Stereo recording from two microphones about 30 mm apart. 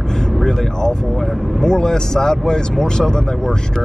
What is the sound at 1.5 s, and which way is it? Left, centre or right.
Speech, left.